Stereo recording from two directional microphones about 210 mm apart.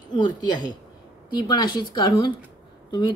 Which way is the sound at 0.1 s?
20° left (ahead or behind).